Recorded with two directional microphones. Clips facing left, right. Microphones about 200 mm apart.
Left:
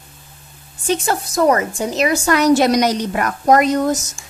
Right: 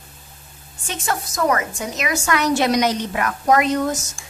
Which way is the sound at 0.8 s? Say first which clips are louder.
Left 7 dB; 30° left (ahead or behind).